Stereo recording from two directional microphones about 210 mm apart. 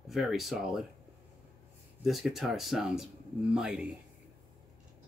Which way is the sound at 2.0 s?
Centre (ahead or behind).